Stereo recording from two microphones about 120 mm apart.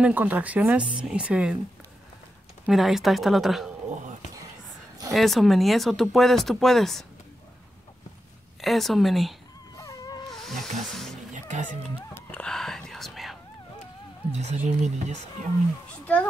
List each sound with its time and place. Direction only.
0.0 s speech: 15° right (ahead or behind)
2.6 s speech: centre (ahead or behind)
5.1 s speech: centre (ahead or behind)
8.5 s speech: centre (ahead or behind)
9.8 s wail: 30° left (ahead or behind)
10.3 s snake: centre (ahead or behind)
10.8 s speech: centre (ahead or behind)
11.3 s music: 90° right
11.9 s whispering: 15° left (ahead or behind)
14.3 s speech: 75° right (ahead or behind)
15.9 s a child's voice: 10° left (ahead or behind)